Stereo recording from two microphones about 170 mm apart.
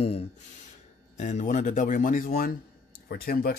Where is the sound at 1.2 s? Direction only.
45° left (ahead or behind); by 3.6 s 65° left (ahead or behind).